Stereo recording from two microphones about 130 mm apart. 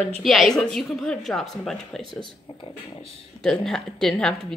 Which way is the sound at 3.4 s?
5° left (ahead or behind).